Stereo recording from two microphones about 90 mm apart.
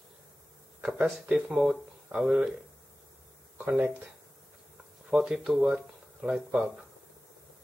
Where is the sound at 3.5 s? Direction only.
20° right (ahead or behind).